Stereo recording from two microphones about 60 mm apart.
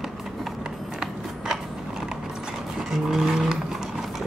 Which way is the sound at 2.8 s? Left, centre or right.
Centre.